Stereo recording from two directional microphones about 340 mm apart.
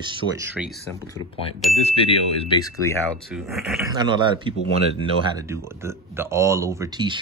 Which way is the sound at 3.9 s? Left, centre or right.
Centre.